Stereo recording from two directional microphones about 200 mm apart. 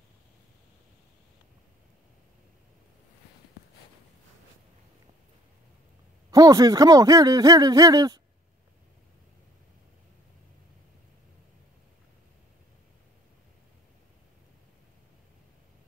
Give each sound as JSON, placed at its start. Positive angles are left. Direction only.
{"t": 6.3, "sound": "speech", "side_deg": -20}